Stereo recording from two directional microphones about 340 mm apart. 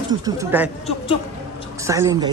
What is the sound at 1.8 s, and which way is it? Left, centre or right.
Speech, centre.